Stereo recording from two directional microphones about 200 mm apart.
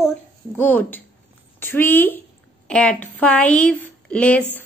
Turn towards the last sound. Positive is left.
turn(degrees=10)  # may be behind; listen again after turning